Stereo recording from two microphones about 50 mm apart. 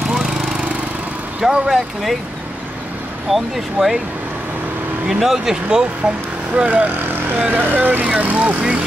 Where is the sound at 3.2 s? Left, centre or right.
Centre.